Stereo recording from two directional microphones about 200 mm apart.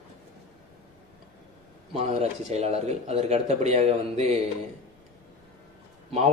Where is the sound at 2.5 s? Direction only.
30° right (ahead or behind).